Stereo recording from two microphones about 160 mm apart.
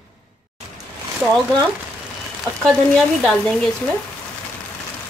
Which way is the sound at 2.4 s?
Centre (ahead or behind).